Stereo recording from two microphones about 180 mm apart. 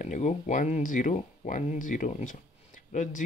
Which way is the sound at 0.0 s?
40° left (ahead or behind).